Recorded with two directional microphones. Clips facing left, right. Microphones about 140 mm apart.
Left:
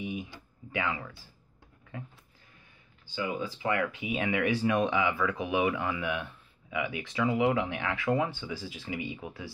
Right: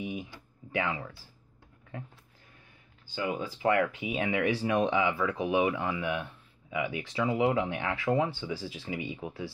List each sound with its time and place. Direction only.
0.7 s speech: 25° right (ahead or behind)
3.2 s speech: 40° right (ahead or behind)